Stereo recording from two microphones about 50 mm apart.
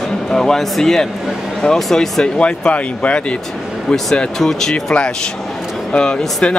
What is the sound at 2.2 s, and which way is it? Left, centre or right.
Speech, centre.